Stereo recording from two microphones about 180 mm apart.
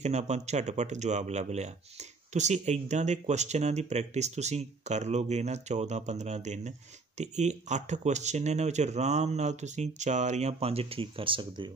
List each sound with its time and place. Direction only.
0.0 s speech: 40° right (ahead or behind)